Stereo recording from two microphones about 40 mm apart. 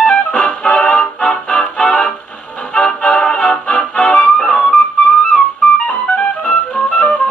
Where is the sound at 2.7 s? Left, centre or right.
Left.